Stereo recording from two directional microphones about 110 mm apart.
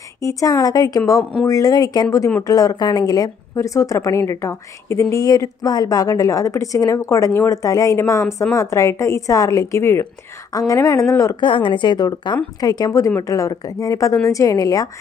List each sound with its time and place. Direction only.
0.2 s a woman's voice: 30° left (ahead or behind)
11.4 s a woman's voice: 50° left (ahead or behind)